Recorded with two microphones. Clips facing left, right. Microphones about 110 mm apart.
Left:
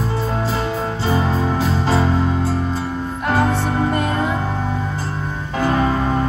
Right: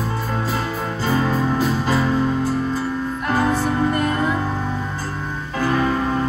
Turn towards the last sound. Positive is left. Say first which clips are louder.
# left 2 dB
turn(degrees=25)  # may be behind; listen again after turning